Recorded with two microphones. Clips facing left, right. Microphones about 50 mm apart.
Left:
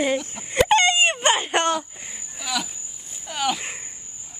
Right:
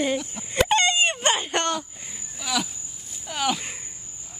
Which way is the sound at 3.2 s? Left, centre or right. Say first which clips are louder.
Left 1 dB; centre.